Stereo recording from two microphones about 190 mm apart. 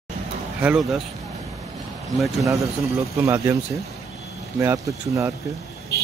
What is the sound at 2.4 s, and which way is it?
Speech, 15° right (ahead or behind).